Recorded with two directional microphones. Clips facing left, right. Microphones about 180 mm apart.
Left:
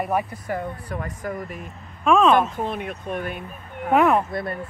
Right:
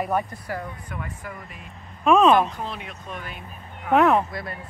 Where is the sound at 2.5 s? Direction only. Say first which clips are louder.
Left 6 dB; 50° left (ahead or behind).